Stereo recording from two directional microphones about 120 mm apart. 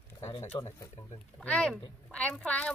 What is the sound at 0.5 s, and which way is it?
Speech, 35° left (ahead or behind).